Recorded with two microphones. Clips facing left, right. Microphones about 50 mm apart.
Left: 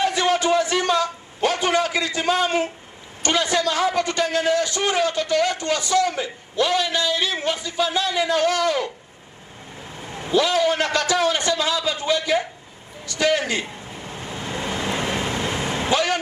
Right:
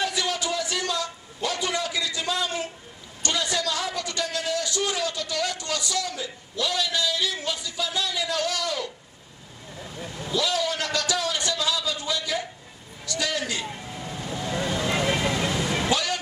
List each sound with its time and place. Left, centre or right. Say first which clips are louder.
0.0 s a sound: left 7 dB; left
3.2 s a man's voice: left 6 dB; left
13.0 s vehicle: left 7 dB; left